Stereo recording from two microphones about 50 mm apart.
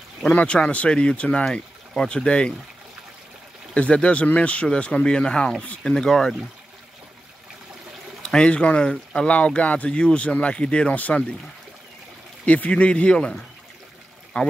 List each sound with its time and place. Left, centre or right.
0.3 s speech: left
3.7 s speech: left
5.9 s speech: centre
8.2 s speech: centre
12.4 s speech: left
14.3 s speech: left